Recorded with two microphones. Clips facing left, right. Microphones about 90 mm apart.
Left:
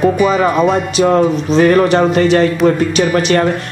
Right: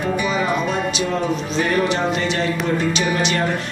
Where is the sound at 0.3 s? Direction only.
55° left (ahead or behind).